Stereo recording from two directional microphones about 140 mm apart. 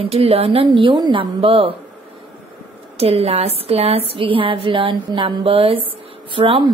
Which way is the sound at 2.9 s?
45° right (ahead or behind).